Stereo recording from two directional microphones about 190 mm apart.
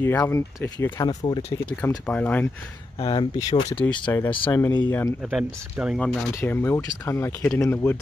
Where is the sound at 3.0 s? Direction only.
25° left (ahead or behind).